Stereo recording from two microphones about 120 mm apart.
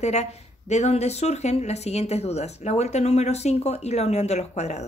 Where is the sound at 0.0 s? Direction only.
70° left (ahead or behind).